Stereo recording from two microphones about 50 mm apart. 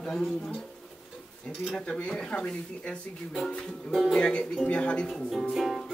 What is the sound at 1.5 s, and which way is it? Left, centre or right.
Music, centre.